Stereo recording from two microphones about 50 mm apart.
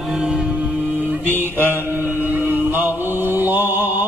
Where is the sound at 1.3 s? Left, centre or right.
Right.